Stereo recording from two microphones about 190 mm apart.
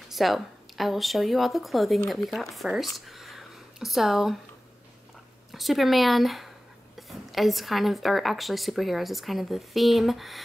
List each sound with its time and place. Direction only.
0.1 s a woman's voice: centre (ahead or behind)
3.1 s a sound: centre (ahead or behind)
5.5 s a woman's voice: centre (ahead or behind)